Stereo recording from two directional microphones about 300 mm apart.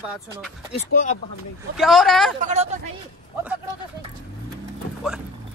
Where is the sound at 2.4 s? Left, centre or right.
Right.